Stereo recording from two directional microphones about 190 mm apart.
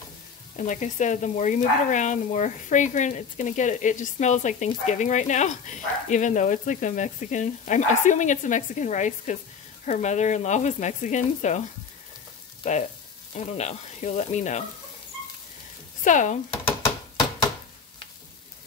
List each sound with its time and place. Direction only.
0.6 s speech: 40° left (ahead or behind)
13.3 s speech: 35° left (ahead or behind)
16.0 s speech: 40° left (ahead or behind)